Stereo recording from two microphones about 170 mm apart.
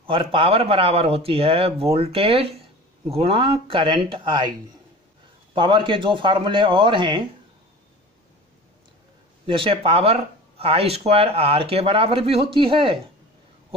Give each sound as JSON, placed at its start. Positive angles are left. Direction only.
{"t": 0.0, "sound": "speech", "side_deg": -30}
{"t": 9.5, "sound": "speech", "side_deg": -30}